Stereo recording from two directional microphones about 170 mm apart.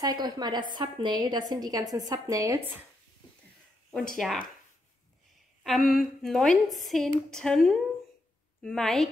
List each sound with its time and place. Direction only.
0.0 s a woman's voice: 25° right (ahead or behind)
3.9 s a woman's voice: 5° left (ahead or behind)
5.6 s a woman's voice: centre (ahead or behind)